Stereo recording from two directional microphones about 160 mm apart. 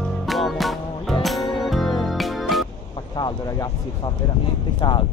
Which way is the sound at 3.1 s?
25° left (ahead or behind).